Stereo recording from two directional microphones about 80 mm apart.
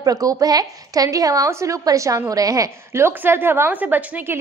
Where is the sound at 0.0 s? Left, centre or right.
Right.